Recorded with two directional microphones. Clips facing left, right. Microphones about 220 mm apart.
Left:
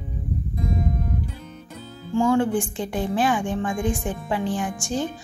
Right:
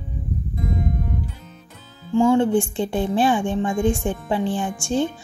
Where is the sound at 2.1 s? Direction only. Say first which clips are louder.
Right 3 dB; 25° right (ahead or behind).